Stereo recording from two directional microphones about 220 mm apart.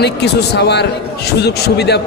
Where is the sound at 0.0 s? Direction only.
50° left (ahead or behind).